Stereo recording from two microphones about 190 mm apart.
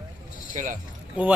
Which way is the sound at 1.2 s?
5° right (ahead or behind).